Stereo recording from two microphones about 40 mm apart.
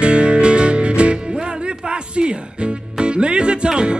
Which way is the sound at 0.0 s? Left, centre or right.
Right.